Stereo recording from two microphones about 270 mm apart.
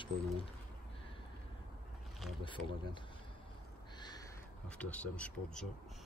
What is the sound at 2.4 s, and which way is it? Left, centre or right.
Speech, centre.